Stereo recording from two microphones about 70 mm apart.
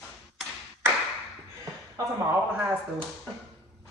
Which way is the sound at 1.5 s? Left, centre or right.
Right.